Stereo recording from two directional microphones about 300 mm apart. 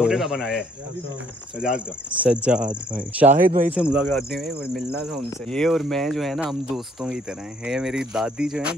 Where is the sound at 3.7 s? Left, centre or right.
Centre.